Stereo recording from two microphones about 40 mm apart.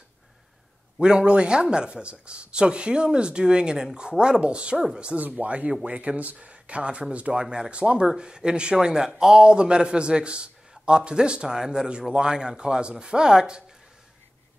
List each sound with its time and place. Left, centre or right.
1.0 s speech: right